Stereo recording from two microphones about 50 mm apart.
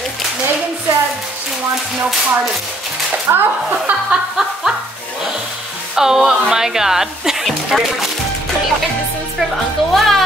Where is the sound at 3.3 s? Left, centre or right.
Right.